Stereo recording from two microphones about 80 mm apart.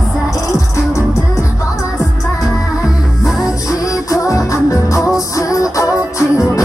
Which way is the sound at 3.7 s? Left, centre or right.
Left.